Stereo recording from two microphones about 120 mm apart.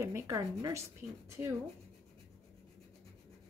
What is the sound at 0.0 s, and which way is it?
Speech, 25° right (ahead or behind).